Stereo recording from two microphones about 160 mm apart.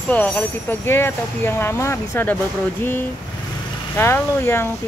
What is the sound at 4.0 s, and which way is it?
Speech, 15° left (ahead or behind).